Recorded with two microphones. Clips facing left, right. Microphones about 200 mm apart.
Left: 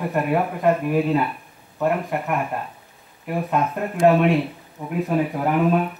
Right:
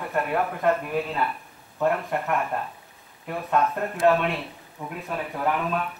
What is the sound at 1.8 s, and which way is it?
Speech, 10° left (ahead or behind).